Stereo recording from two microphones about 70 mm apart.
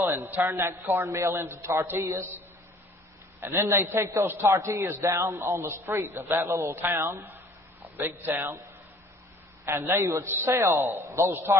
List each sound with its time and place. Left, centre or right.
0.0 s a man's voice: right
9.7 s a man's voice: right